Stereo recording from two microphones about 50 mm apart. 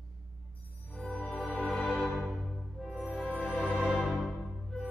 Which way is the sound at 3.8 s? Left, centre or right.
Centre.